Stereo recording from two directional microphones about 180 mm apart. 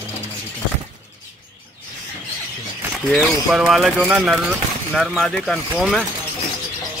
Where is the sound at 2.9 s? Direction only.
Centre (ahead or behind).